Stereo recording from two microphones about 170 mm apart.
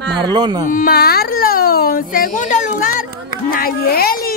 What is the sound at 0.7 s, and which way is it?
Speech, 60° left (ahead or behind).